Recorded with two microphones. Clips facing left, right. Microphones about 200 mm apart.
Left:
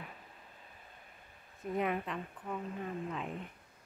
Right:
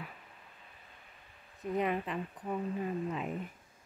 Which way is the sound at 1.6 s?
Centre (ahead or behind).